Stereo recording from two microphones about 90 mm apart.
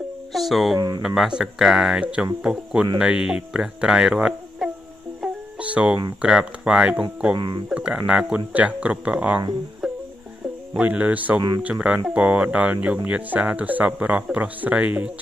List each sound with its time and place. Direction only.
0.3 s speech: centre (ahead or behind)
0.7 s speech: 45° right (ahead or behind)
1.0 s speech: 5° right (ahead or behind)
7.3 s speech: 55° right (ahead or behind)
7.7 s speech: 10° right (ahead or behind)
9.8 s music: centre (ahead or behind)
10.8 s speech: 15° right (ahead or behind)